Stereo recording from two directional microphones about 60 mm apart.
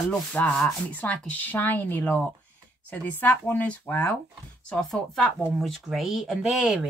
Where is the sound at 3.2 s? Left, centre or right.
Left.